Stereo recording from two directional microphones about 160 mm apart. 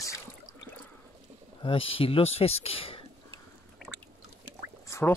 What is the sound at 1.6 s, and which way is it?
Speech, 35° left (ahead or behind).